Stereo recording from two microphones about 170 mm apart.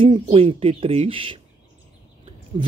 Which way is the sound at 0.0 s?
30° right (ahead or behind).